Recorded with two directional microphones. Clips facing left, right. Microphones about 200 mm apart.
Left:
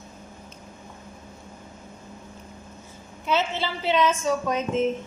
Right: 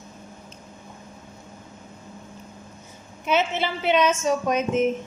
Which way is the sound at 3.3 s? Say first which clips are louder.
Right 2 dB; 20° right (ahead or behind).